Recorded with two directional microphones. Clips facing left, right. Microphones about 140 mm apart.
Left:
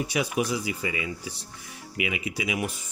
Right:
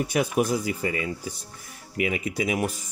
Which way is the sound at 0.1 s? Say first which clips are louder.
Right 5 dB; 50° right (ahead or behind).